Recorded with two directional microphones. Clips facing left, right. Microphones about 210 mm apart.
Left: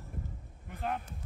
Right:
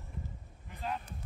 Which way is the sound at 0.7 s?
55° left (ahead or behind).